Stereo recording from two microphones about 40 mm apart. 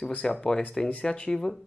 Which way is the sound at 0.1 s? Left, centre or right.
Left.